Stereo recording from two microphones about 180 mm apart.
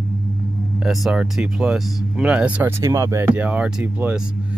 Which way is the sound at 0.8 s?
5° right (ahead or behind).